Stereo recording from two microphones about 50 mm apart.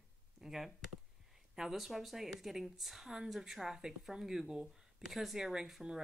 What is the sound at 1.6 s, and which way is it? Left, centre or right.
Speech, centre.